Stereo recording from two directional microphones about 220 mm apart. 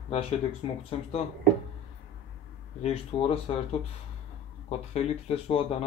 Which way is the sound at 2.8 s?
25° left (ahead or behind).